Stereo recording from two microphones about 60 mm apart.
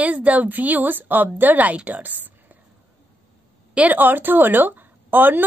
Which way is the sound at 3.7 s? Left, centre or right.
Right.